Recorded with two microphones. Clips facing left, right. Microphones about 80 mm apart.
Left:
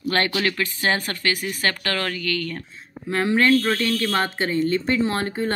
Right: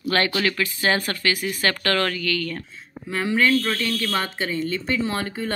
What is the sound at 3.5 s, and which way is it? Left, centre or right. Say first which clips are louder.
Speech: left 3 dB; centre.